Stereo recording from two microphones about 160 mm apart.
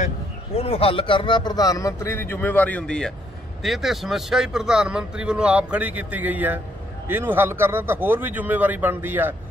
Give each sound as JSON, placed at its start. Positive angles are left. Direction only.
{"t": 0.6, "sound": "speech", "side_deg": 35}